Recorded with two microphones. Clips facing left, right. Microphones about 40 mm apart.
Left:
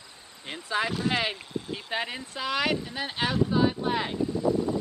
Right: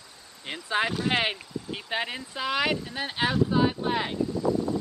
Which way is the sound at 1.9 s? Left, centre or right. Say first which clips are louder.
Right 1 dB; centre.